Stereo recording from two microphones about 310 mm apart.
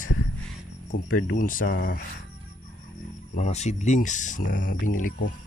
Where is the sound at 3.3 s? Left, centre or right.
Left.